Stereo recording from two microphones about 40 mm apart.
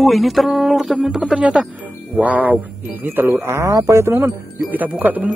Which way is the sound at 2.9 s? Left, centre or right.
Right.